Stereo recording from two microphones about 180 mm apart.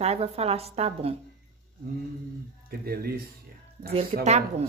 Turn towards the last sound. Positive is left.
turn(degrees=-40)  # may be behind; listen again after turning